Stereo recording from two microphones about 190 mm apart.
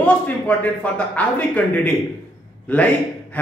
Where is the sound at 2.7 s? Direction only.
10° left (ahead or behind).